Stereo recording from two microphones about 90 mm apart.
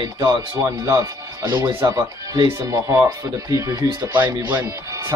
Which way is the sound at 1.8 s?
45° right (ahead or behind).